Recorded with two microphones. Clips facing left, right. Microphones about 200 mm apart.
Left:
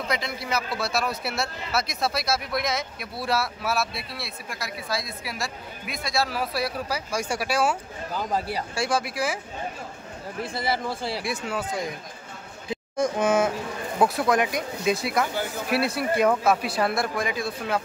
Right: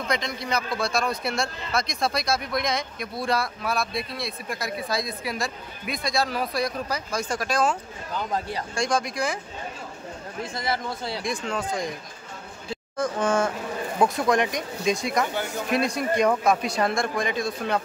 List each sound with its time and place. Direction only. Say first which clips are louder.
0.1 s a man's voice: right 2 dB; 5° left (ahead or behind)
10.6 s a man's voice: left 1 dB; 5° left (ahead or behind)